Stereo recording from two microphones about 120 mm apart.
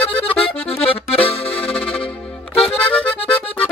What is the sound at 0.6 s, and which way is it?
Accordion, 50° left (ahead or behind).